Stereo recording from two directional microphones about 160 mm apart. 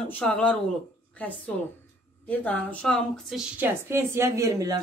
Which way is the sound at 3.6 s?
15° right (ahead or behind).